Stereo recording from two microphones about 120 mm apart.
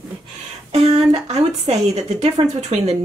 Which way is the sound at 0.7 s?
65° right (ahead or behind).